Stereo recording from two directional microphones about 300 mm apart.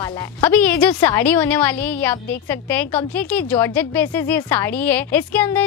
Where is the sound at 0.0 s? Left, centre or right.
Centre.